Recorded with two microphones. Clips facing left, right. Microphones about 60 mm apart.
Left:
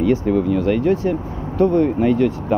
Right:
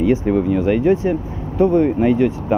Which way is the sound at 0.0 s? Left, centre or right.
Centre.